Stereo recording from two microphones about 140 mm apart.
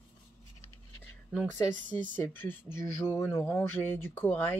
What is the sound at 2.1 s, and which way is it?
Speech, 15° left (ahead or behind).